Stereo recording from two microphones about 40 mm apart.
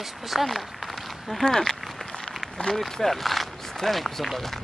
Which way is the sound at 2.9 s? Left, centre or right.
Centre.